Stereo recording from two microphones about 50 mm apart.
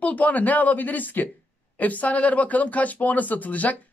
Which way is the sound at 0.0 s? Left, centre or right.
Left.